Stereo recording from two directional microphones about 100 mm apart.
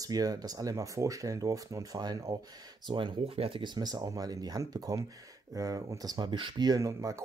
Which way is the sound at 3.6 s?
45° right (ahead or behind).